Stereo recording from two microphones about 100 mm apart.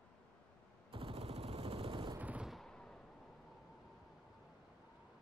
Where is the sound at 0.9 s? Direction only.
65° right (ahead or behind).